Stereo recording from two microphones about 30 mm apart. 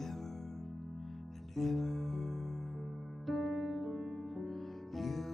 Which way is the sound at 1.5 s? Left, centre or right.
Centre.